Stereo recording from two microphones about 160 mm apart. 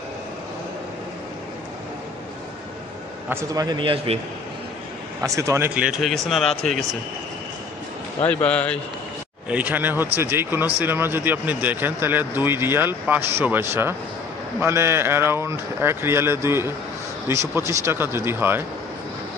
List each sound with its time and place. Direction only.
3.3 s a man's voice: 20° right (ahead or behind)
5.2 s speech: 20° right (ahead or behind)
5.8 s speech: 5° right (ahead or behind)
8.3 s a man's voice: 10° left (ahead or behind)
9.5 s speech: 10° right (ahead or behind)